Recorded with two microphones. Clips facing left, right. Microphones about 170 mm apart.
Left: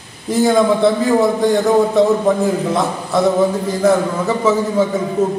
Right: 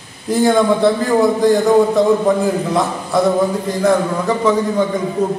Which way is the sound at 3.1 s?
Centre (ahead or behind).